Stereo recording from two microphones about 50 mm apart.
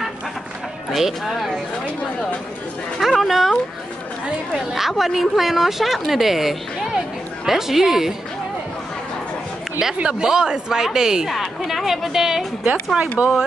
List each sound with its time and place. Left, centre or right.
0.9 s speech: centre
3.0 s speech: centre
4.7 s speech: centre
10.0 s speech: centre
11.2 s speech: centre
13.2 s speech: right